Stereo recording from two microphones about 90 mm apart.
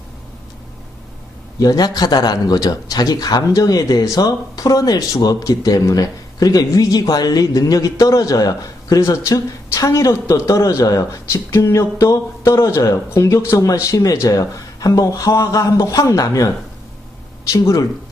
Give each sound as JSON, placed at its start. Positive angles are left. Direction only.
{"t": 1.6, "sound": "speech", "side_deg": 45}
{"t": 17.5, "sound": "speech", "side_deg": 40}